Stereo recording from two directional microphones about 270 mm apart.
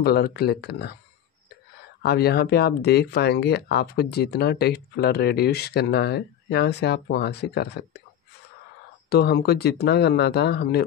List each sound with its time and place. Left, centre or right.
0.0 s speech: left
2.0 s speech: left
9.1 s speech: left